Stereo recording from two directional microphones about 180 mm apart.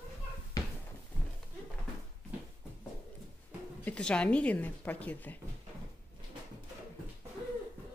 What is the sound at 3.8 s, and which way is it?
Speech, 5° left (ahead or behind).